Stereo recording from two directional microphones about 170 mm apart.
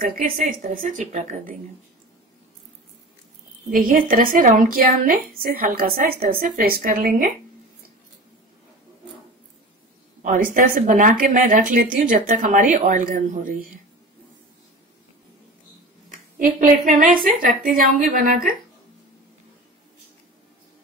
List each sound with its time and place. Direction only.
0.0 s a woman's voice: 55° right (ahead or behind)
3.7 s a woman's voice: 55° right (ahead or behind)
10.2 s a woman's voice: 50° right (ahead or behind)
16.3 s a woman's voice: 50° right (ahead or behind)